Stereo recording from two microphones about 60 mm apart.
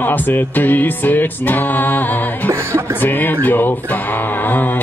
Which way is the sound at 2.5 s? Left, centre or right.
Right.